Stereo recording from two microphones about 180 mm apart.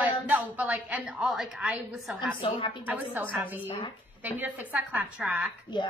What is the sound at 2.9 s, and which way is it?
Speech, 10° right (ahead or behind).